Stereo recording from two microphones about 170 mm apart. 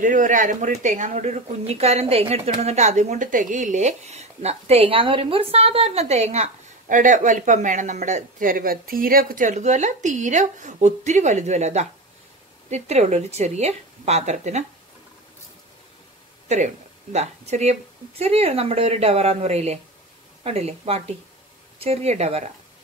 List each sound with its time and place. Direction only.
0.0 s speech: 50° right (ahead or behind)
16.4 s speech: 40° right (ahead or behind)